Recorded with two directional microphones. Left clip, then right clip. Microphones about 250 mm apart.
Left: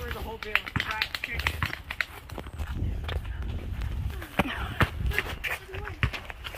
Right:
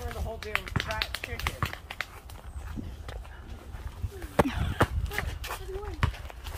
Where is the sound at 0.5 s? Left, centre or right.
Centre.